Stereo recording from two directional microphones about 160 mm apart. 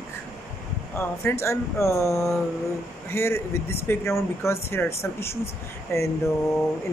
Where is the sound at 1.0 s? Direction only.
15° left (ahead or behind).